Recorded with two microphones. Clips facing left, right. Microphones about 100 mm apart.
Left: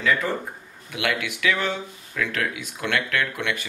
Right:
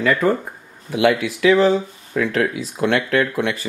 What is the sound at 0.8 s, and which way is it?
Speech, 30° right (ahead or behind).